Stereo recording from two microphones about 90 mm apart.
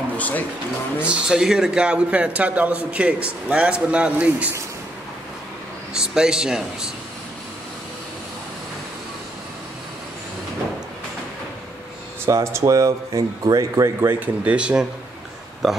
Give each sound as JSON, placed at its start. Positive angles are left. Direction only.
{"t": 0.9, "sound": "a man's voice", "side_deg": -10}
{"t": 5.9, "sound": "a man's voice", "side_deg": -10}
{"t": 12.3, "sound": "speech", "side_deg": -35}
{"t": 14.0, "sound": "a man's voice", "side_deg": -15}